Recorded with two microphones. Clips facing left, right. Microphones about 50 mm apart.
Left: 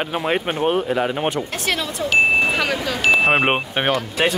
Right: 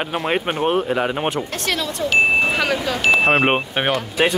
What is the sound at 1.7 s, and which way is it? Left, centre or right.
A man's voice, centre.